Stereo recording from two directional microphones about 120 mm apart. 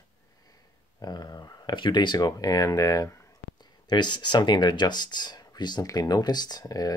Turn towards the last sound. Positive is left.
turn(degrees=30)  # may be behind; listen again after turning